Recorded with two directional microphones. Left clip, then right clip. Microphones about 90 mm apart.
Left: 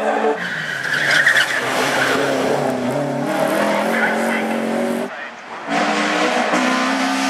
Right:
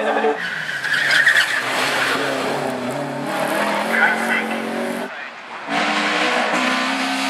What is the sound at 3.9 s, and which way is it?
Vehicle, 35° right (ahead or behind).